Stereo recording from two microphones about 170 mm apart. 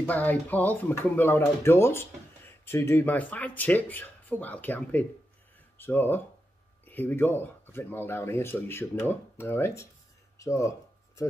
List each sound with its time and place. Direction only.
0.0 s speech: 10° left (ahead or behind)